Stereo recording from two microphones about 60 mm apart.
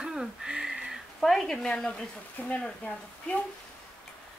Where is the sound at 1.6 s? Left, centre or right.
Centre.